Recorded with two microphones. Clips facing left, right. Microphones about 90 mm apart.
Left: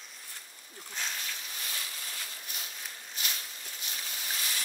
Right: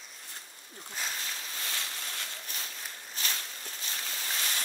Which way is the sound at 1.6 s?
65° right (ahead or behind).